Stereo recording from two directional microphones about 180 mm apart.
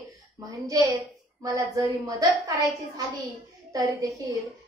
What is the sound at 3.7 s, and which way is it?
Speech, 20° right (ahead or behind).